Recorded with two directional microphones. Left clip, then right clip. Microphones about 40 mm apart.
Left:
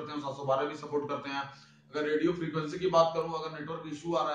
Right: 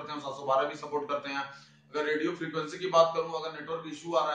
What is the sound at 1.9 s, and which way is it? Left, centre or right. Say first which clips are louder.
A man's voice: even; right.